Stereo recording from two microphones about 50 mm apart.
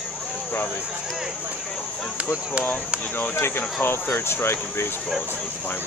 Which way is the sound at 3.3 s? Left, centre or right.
Left.